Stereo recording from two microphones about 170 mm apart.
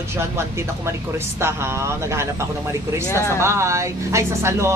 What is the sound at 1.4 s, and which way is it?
Speech, 15° right (ahead or behind).